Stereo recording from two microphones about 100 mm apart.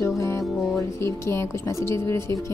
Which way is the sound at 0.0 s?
30° left (ahead or behind).